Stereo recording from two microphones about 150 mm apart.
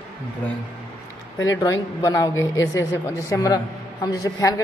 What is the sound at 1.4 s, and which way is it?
Speech, 20° left (ahead or behind).